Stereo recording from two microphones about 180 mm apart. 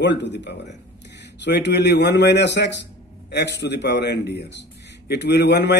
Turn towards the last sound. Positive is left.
turn(degrees=70)  # may be behind; listen again after turning